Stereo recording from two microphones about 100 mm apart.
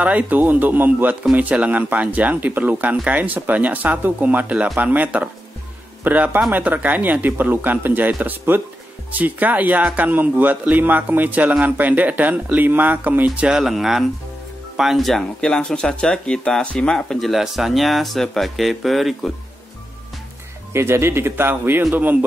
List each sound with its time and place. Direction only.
0.0 s speech: 15° right (ahead or behind); by 19.3 s centre (ahead or behind)
20.7 s speech: 25° right (ahead or behind)